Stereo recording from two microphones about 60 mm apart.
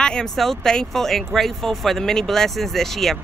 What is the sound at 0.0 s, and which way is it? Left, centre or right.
Speech, centre.